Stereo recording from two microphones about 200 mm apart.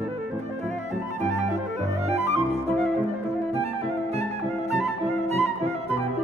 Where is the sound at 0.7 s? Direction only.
35° right (ahead or behind).